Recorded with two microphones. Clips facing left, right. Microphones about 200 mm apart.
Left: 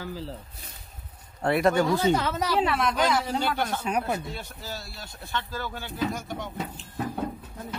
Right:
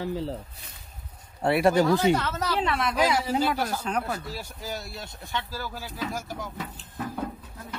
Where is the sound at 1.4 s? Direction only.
5° right (ahead or behind).